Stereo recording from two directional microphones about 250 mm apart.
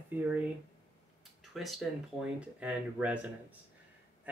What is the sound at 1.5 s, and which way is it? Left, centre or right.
Speech, centre.